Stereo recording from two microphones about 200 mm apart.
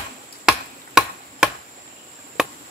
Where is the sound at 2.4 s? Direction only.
5° right (ahead or behind).